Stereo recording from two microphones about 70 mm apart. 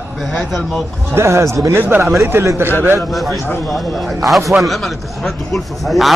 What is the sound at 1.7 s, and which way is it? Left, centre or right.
Speech, right.